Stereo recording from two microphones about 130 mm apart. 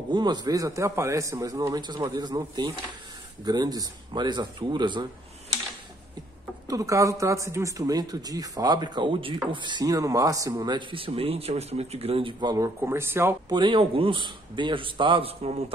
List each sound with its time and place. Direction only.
0.1 s a man's voice: 35° right (ahead or behind)
6.7 s speech: 25° right (ahead or behind)
13.5 s a man's voice: 40° right (ahead or behind)